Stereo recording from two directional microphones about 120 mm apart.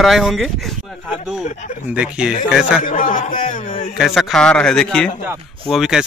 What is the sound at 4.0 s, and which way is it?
Speech, centre (ahead or behind).